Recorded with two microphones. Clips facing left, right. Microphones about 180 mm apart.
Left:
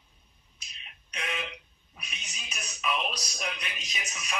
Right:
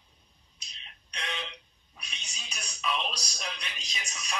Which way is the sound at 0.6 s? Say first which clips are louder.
Left 1 dB; 5° left (ahead or behind).